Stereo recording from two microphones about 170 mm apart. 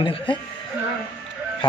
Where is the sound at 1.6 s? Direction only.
30° left (ahead or behind).